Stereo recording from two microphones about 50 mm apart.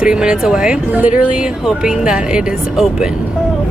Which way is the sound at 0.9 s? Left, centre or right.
Right.